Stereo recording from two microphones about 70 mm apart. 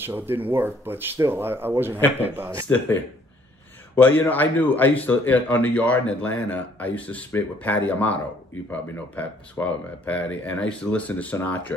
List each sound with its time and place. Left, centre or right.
0.0 s speech: right
3.9 s speech: left